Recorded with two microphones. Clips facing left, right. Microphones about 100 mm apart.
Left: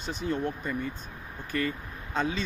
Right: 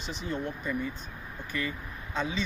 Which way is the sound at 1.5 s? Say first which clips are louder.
Left 4 dB; 45° left (ahead or behind).